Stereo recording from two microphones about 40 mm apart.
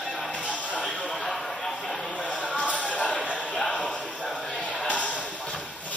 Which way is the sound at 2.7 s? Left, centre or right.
Left.